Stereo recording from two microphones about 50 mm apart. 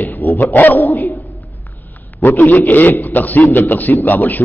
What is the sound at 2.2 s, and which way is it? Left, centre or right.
A man's voice, left.